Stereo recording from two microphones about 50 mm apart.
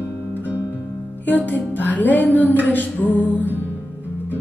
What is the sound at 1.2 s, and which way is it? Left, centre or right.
Music, left.